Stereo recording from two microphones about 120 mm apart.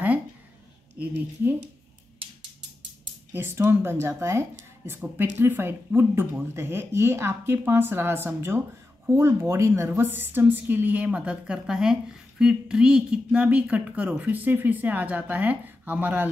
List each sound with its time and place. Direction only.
0.9 s a woman's voice: 15° right (ahead or behind)
3.3 s a woman's voice: 20° right (ahead or behind)